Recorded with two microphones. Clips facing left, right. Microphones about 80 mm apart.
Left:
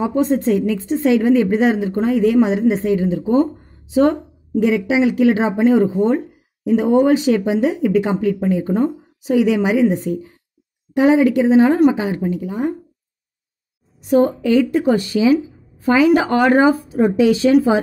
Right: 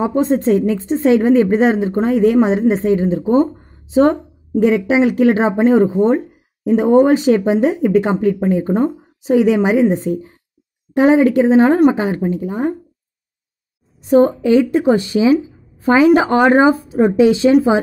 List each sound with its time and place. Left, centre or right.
0.0 s a woman's voice: right
14.0 s speech: right